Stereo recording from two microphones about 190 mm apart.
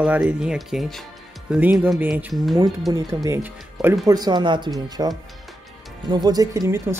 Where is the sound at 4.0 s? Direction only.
20° right (ahead or behind).